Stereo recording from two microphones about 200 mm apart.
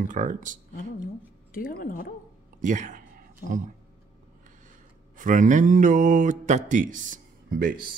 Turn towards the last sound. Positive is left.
turn(degrees=-45)  # may be behind; listen again after turning